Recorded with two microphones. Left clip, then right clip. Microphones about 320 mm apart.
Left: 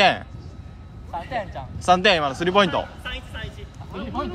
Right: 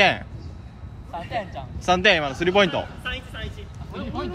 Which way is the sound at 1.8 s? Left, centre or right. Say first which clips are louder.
Left 1 dB; centre.